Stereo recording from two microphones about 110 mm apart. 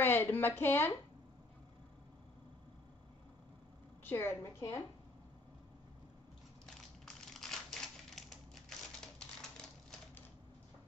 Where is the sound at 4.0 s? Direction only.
20° left (ahead or behind).